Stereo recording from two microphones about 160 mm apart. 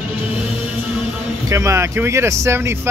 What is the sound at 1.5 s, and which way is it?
Speech, 20° right (ahead or behind).